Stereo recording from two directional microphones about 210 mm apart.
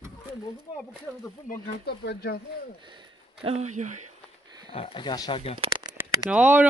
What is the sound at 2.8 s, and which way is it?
Speech, 25° right (ahead or behind).